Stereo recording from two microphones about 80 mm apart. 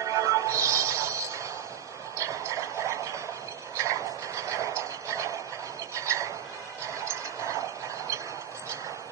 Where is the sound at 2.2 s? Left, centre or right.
Right.